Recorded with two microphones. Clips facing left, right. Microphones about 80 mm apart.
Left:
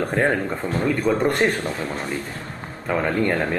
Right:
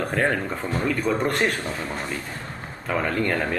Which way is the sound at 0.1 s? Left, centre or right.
Centre.